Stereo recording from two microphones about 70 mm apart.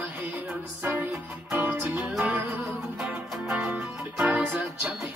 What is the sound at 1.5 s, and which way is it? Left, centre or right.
Music, right.